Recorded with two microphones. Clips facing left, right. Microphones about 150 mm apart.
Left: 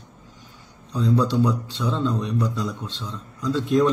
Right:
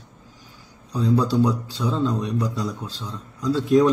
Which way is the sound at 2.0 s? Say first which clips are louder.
Even; 35° right (ahead or behind).